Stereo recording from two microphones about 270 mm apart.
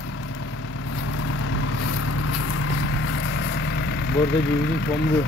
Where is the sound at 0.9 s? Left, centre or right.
Left.